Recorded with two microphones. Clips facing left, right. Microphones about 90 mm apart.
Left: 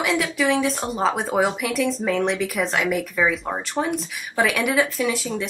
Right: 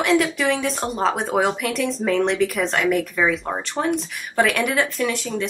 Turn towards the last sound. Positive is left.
turn(degrees=0)  # may be behind; listen again after turning